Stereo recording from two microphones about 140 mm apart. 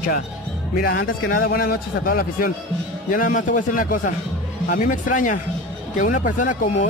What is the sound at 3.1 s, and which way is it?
A man's voice, 75° left (ahead or behind).